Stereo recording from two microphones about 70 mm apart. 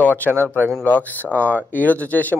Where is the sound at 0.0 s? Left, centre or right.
Left.